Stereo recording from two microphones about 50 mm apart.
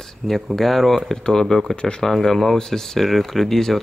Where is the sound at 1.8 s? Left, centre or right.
Centre.